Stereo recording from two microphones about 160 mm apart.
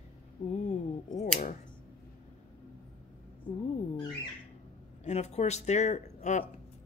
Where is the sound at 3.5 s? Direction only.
30° left (ahead or behind).